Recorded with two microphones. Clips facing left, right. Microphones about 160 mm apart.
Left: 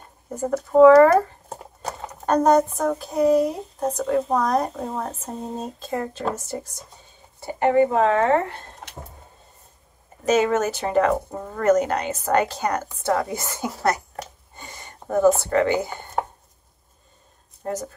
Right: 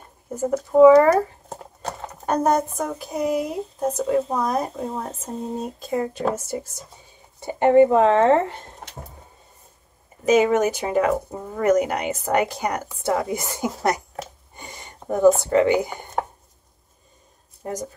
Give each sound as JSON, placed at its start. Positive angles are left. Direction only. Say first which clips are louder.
{"t": 0.7, "sound": "speech", "louder": "even", "side_deg": -10}
{"t": 1.5, "sound": "clip-clop", "louder": "even", "side_deg": 10}
{"t": 2.2, "sound": "speech", "louder": "left 3 dB", "side_deg": -10}
{"t": 7.4, "sound": "speech", "louder": "right 4 dB", "side_deg": -25}
{"t": 10.2, "sound": "speech", "louder": "right 2 dB", "side_deg": -15}